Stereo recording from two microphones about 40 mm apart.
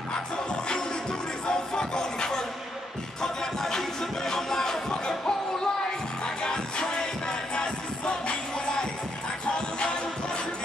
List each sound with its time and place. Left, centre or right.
1.5 s music: centre
6.4 s music: centre